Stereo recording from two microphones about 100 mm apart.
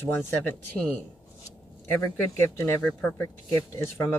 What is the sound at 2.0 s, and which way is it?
Speech, 30° left (ahead or behind).